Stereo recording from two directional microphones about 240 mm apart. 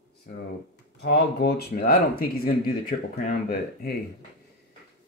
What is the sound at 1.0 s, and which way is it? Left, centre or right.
Speech, left.